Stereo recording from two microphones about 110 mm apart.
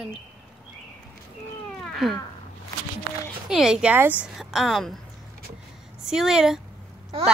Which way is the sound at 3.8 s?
15° right (ahead or behind).